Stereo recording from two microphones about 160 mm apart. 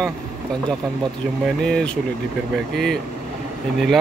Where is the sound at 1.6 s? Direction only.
5° left (ahead or behind).